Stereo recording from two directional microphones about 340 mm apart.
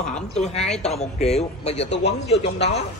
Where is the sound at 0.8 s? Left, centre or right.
Centre.